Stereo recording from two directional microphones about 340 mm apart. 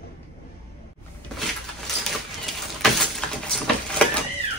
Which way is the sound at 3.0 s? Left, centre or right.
Centre.